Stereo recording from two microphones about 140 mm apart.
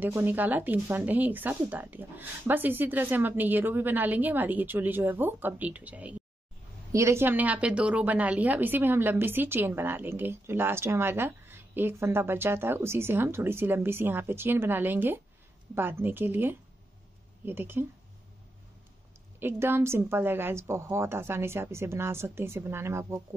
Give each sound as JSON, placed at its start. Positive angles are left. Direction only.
{"t": 0.0, "sound": "a woman's voice", "side_deg": -15}
{"t": 6.9, "sound": "a woman's voice", "side_deg": -20}
{"t": 19.4, "sound": "a woman's voice", "side_deg": -15}